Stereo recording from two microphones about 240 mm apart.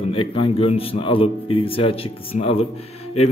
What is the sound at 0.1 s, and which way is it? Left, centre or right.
A man's voice, left.